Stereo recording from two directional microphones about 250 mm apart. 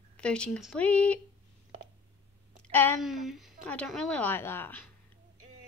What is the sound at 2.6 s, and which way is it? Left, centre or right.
A woman's voice, centre.